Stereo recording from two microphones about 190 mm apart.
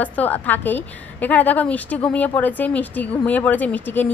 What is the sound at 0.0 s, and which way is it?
A woman's voice, 10° left (ahead or behind).